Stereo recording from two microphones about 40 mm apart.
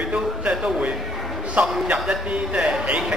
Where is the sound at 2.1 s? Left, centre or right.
Right.